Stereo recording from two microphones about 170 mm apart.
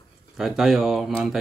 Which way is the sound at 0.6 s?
Centre (ahead or behind).